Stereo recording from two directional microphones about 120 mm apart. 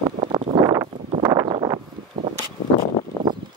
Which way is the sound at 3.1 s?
30° left (ahead or behind).